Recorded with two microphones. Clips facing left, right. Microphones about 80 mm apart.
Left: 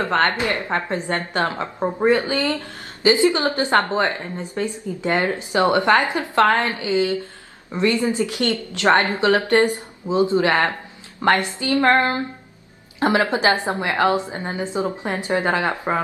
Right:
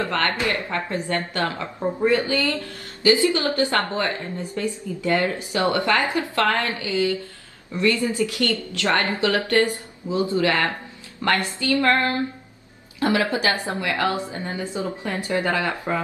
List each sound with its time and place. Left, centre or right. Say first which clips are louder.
0.0 s a woman's voice: left 4 dB; left